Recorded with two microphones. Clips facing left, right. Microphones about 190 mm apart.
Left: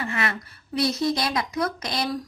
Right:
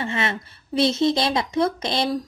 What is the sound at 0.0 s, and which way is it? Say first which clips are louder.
A woman's voice: right 2 dB; 25° right (ahead or behind).